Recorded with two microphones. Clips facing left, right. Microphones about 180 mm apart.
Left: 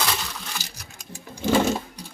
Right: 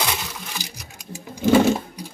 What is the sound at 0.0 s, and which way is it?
Coin, 15° right (ahead or behind).